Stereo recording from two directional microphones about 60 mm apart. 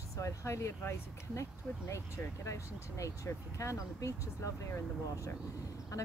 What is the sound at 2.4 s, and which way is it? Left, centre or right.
Speech, left.